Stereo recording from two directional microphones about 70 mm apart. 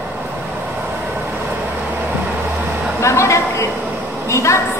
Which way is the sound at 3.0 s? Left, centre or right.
Left.